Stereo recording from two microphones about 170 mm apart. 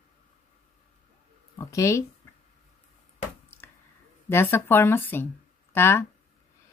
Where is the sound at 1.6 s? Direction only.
15° left (ahead or behind).